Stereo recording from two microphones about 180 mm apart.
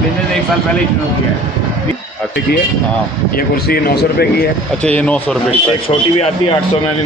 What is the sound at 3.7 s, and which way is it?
Speech, 60° left (ahead or behind).